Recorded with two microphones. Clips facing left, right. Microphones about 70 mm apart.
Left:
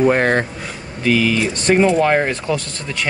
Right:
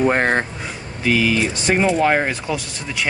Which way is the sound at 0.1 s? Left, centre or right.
Right.